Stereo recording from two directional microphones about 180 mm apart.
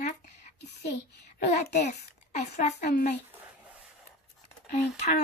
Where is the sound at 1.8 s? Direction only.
40° left (ahead or behind).